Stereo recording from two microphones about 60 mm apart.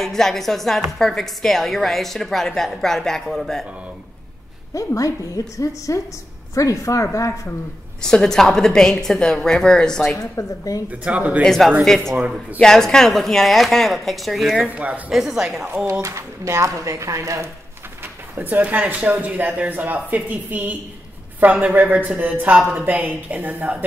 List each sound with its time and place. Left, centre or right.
0.0 s a woman's voice: centre
4.7 s a woman's voice: left
8.0 s a woman's voice: centre
10.1 s a woman's voice: left
10.9 s speech: right
11.4 s a woman's voice: centre
14.7 s speech: right
15.0 s speech: centre
15.6 s speech: right
15.9 s speech: right
18.3 s a woman's voice: right